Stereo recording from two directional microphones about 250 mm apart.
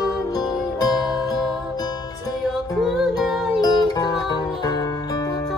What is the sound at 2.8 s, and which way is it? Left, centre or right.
Music, centre.